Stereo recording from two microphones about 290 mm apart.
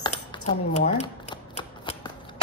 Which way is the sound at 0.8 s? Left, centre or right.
Left.